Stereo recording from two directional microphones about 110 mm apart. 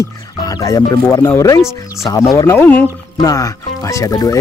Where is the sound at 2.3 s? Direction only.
25° left (ahead or behind).